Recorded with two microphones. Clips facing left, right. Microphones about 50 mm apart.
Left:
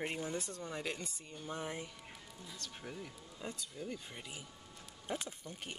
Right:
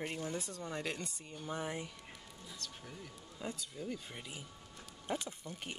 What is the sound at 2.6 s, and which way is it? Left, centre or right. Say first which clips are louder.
Speech: left 5 dB; left.